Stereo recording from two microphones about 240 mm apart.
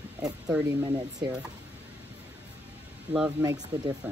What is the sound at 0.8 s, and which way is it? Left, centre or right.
Speech, centre.